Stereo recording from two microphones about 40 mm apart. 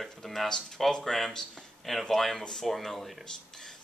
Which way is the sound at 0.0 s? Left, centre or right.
Centre.